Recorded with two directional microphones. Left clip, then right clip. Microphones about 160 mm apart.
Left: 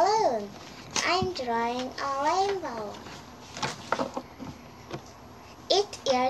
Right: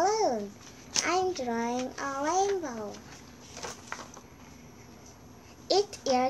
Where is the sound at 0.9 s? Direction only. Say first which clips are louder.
Left 2 dB; 10° left (ahead or behind).